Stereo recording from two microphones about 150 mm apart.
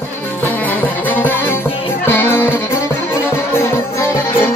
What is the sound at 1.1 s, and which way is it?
Music, 15° left (ahead or behind).